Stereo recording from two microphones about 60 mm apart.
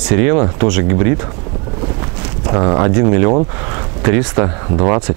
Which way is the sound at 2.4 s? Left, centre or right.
Right.